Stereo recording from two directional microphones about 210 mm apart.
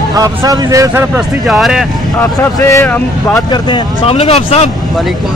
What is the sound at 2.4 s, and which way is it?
Speech, 15° left (ahead or behind).